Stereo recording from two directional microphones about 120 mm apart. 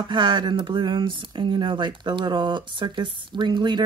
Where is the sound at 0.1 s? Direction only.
40° right (ahead or behind).